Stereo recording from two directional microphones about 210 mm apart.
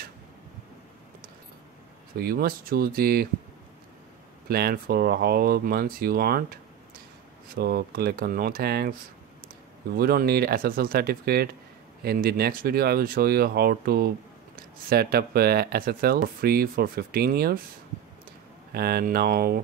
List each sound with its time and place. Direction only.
2.1 s speech: 45° right (ahead or behind)
4.5 s speech: 45° right (ahead or behind)
9.9 s speech: 45° right (ahead or behind)
18.7 s speech: 50° right (ahead or behind)